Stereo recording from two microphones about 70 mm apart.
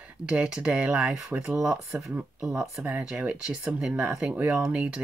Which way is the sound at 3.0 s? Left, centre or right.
Centre.